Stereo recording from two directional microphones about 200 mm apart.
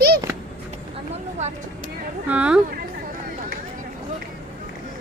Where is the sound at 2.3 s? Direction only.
5° right (ahead or behind).